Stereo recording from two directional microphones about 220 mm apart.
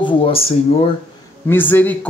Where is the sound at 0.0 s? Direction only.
25° left (ahead or behind).